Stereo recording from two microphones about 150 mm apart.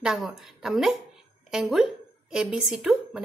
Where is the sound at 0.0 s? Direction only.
5° right (ahead or behind).